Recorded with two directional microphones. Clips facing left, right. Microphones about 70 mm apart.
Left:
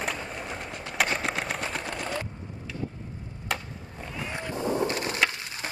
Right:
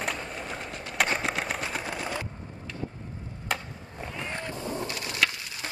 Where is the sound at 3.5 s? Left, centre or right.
Centre.